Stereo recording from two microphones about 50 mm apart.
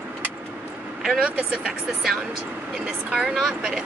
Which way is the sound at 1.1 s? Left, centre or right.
Centre.